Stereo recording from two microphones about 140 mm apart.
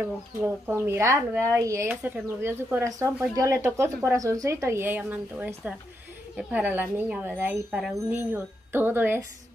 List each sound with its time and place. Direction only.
0.0 s speech: 15° right (ahead or behind)